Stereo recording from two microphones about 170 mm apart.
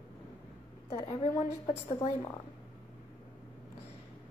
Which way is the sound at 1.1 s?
40° left (ahead or behind).